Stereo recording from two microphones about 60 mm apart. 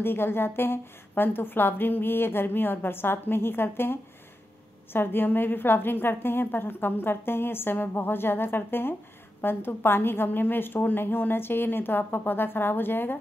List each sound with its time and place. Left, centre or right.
0.0 s a woman's voice: left